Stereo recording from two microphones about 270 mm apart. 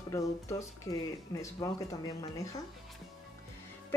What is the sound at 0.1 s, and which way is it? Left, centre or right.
Speech, centre.